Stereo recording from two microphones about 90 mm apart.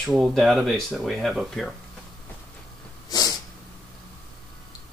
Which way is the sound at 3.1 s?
45° left (ahead or behind).